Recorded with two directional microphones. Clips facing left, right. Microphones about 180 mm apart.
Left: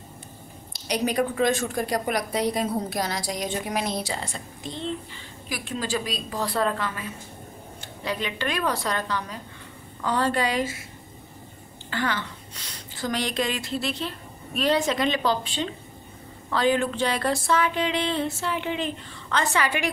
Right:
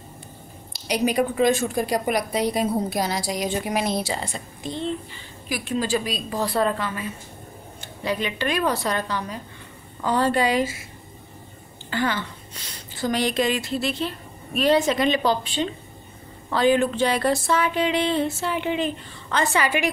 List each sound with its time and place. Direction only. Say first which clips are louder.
0.8 s a woman's voice: right 3 dB; 10° right (ahead or behind)
5.5 s a woman's voice: right 5 dB; 10° right (ahead or behind)
6.3 s speech: right 3 dB; 25° right (ahead or behind)
6.6 s a woman's voice: right 3 dB; 10° right (ahead or behind)
11.9 s a woman's voice: right 3 dB; 10° right (ahead or behind)
17.2 s speech: right 2 dB; 20° right (ahead or behind)
17.6 s a woman's voice: right 3 dB; 5° right (ahead or behind)